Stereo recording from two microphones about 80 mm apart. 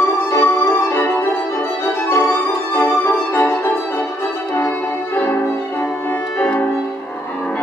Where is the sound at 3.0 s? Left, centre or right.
Left.